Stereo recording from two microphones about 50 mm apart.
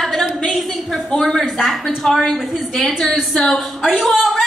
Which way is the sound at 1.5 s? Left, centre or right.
Centre.